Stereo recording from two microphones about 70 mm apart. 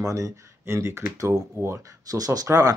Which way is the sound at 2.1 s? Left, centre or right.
Right.